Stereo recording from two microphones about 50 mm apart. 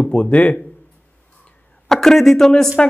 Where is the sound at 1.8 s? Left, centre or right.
Centre.